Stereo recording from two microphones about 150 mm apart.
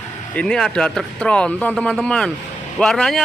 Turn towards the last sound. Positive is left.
turn(degrees=5)  # may be behind; listen again after turning